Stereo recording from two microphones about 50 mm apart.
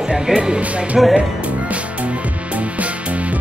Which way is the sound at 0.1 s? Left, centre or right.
Centre.